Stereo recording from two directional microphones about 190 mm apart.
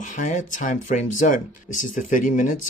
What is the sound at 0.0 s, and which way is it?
Speech, 40° left (ahead or behind).